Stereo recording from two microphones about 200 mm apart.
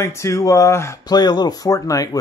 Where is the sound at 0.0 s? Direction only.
15° left (ahead or behind).